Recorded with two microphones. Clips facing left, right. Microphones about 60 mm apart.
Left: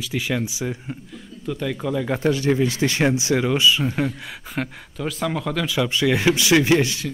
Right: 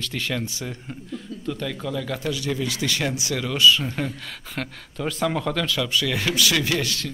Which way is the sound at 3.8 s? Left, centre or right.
Centre.